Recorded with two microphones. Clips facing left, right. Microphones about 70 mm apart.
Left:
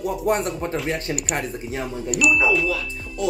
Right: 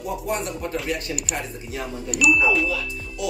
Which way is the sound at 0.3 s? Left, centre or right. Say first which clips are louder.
Left 6 dB; left.